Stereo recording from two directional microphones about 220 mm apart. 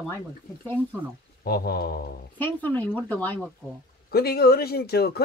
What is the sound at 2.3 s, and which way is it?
Speech, 10° left (ahead or behind).